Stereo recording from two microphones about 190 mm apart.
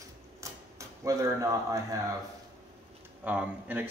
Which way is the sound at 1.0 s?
15° right (ahead or behind).